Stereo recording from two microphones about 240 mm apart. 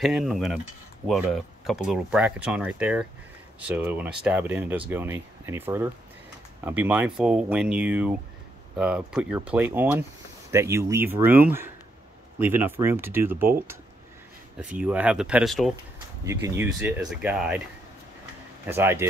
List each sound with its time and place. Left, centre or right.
0.0 s speech: centre
16.3 s speech: centre
18.7 s speech: centre